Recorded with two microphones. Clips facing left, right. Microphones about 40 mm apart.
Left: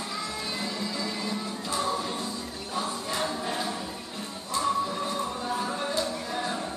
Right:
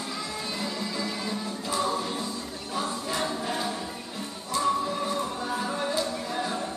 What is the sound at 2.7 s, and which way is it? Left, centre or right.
Choir, centre.